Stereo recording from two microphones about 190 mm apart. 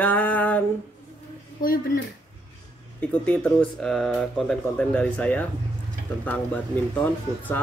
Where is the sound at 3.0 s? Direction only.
5° left (ahead or behind).